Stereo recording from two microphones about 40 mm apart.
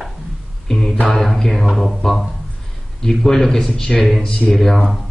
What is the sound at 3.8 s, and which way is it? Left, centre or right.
Speech, left.